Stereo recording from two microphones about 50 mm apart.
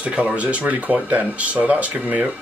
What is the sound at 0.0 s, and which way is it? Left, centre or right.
Speech, right.